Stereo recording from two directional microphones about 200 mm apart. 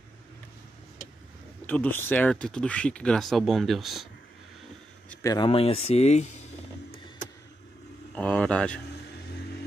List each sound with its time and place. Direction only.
1.7 s speech: 10° left (ahead or behind)
5.1 s speech: 20° left (ahead or behind)
8.2 s speech: 5° left (ahead or behind)